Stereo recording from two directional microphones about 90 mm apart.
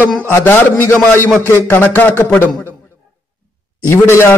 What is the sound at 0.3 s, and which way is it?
Speech, 25° left (ahead or behind).